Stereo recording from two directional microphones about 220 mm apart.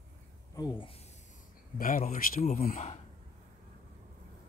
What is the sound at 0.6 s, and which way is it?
Speech, 20° left (ahead or behind).